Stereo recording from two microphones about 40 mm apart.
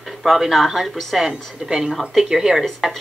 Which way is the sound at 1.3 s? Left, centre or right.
Centre.